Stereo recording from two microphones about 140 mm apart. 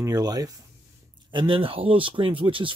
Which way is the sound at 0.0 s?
25° right (ahead or behind).